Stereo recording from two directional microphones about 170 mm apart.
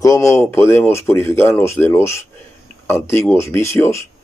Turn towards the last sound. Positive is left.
turn(degrees=15)  # may be behind; listen again after turning